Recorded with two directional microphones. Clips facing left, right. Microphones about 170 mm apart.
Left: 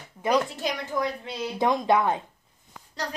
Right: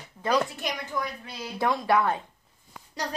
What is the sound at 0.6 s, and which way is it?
A woman's voice, 25° left (ahead or behind).